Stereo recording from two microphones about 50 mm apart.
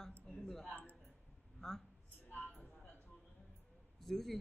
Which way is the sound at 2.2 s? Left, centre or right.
Left.